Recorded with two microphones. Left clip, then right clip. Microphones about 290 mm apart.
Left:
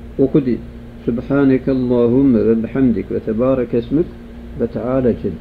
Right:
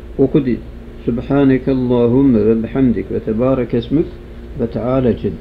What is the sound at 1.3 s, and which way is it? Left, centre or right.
Speech, centre.